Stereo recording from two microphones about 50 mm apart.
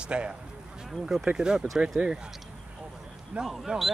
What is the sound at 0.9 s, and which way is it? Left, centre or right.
Speech, centre.